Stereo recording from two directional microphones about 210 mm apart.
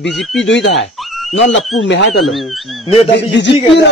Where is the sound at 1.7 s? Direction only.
75° left (ahead or behind).